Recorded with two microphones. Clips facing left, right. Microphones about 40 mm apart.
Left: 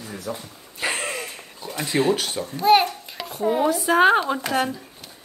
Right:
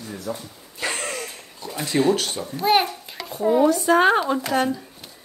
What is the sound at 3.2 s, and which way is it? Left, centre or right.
Speech, left.